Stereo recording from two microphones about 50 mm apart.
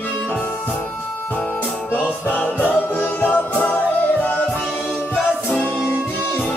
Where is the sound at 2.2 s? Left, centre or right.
Left.